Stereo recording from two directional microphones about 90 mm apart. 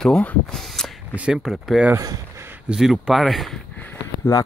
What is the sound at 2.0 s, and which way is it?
Speech, 40° right (ahead or behind).